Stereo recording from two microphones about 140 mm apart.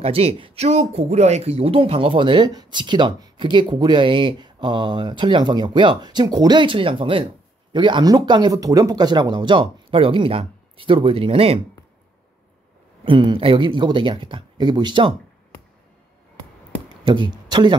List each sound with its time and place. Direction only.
0.0 s speech: 45° right (ahead or behind)
13.0 s speech: 35° right (ahead or behind)
17.0 s speech: 35° right (ahead or behind)